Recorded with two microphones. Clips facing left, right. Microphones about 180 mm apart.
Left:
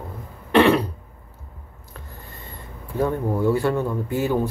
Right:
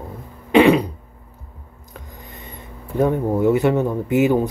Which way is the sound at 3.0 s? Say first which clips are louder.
Right 4 dB; 20° right (ahead or behind).